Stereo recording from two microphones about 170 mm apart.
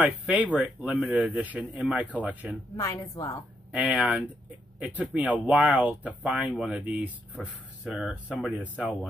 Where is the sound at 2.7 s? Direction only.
20° left (ahead or behind).